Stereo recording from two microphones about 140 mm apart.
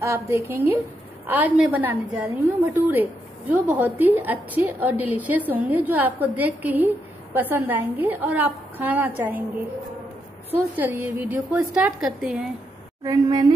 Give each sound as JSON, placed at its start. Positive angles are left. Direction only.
{"t": 0.0, "sound": "a woman's voice", "side_deg": -20}
{"t": 10.8, "sound": "a woman's voice", "side_deg": -15}
{"t": 13.0, "sound": "speech", "side_deg": -25}